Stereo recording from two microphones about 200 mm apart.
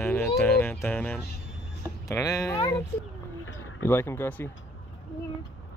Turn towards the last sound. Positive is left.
turn(degrees=10)  # may be behind; listen again after turning